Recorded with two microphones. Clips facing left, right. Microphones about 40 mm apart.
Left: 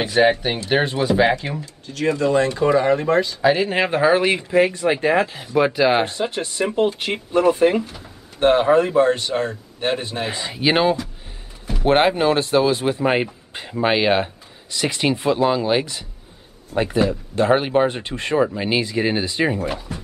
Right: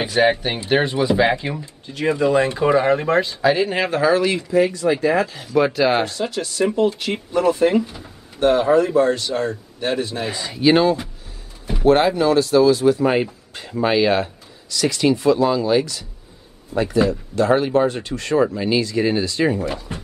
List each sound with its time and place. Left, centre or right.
0.0 s speech: centre
1.9 s speech: centre
3.4 s speech: centre
3.7 s speech: centre; by 5.3 s left
5.3 s speech: centre
6.0 s a man's voice: left
7.1 s speech: centre
8.4 s a man's voice: left
11.8 s a man's voice: left
19.9 s music: right